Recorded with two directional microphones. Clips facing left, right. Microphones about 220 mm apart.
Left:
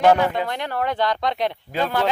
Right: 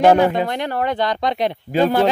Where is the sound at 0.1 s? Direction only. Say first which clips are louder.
Right 4 dB; 25° right (ahead or behind).